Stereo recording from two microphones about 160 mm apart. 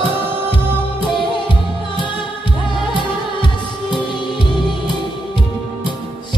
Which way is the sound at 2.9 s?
30° left (ahead or behind).